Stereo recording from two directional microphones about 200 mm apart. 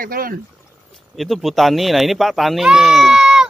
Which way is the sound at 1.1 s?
Centre (ahead or behind).